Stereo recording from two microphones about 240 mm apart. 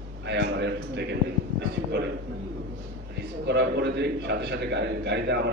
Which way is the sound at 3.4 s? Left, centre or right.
Right.